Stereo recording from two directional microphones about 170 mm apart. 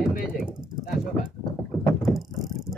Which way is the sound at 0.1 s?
55° left (ahead or behind).